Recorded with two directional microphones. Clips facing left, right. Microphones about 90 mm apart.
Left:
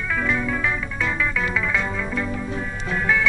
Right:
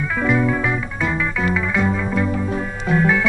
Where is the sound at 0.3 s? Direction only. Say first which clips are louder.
Right 8 dB; 15° right (ahead or behind).